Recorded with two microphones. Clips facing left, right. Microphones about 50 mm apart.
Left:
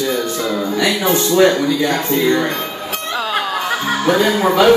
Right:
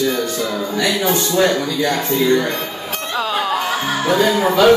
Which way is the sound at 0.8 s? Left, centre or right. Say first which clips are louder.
Left 1 dB; left.